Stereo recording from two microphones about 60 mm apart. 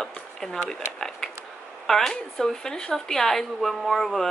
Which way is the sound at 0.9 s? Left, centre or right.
Centre.